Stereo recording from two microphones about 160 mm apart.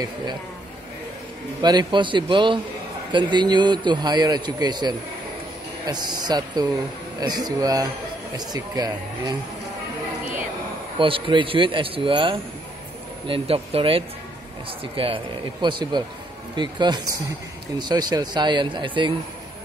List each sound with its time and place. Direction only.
1.6 s a man's voice: 25° right (ahead or behind)
11.0 s a man's voice: 35° right (ahead or behind)